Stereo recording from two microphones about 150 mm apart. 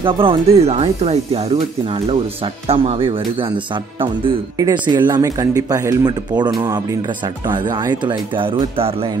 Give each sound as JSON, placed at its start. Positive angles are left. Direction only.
{"t": 0.0, "sound": "speech", "side_deg": -35}